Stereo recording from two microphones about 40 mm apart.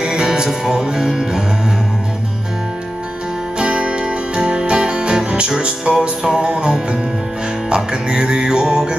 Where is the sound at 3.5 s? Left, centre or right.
Right.